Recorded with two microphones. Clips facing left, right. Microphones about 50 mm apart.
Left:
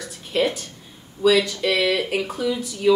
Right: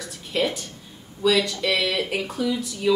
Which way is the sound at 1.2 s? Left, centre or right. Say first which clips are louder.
Left 3 dB; centre.